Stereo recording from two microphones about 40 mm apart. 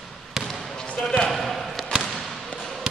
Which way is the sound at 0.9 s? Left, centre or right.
Centre.